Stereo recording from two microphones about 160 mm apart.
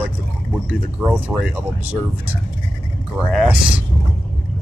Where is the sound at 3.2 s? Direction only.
5° right (ahead or behind).